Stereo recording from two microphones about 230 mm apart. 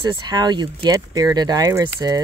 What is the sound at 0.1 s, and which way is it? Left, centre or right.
Speech, centre.